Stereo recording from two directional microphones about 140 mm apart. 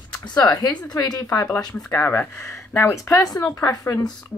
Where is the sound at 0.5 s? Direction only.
25° left (ahead or behind).